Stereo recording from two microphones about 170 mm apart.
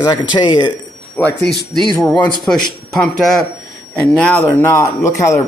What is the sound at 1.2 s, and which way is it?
Speech, 15° left (ahead or behind).